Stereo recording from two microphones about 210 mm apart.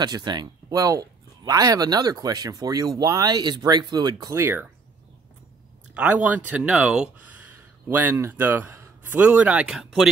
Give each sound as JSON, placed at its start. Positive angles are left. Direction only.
{"t": 0.0, "sound": "speech", "side_deg": -20}
{"t": 5.9, "sound": "speech", "side_deg": -5}